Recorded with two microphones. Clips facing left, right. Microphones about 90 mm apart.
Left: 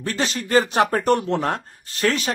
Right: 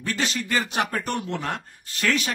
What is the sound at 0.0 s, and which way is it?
Speech, 35° left (ahead or behind).